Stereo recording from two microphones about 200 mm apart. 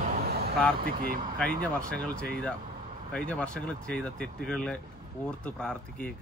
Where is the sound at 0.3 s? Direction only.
50° right (ahead or behind).